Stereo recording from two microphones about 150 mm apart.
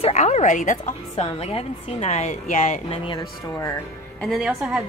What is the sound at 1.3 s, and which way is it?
A woman's voice, 45° left (ahead or behind).